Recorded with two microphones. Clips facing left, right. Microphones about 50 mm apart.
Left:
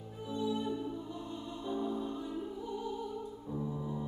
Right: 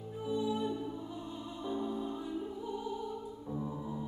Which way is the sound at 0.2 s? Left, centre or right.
Centre.